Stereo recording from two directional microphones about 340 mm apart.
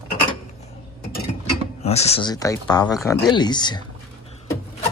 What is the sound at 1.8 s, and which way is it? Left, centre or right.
Speech, centre.